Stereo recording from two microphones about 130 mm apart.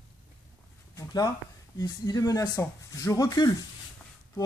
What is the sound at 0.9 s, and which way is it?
Speech, 25° left (ahead or behind).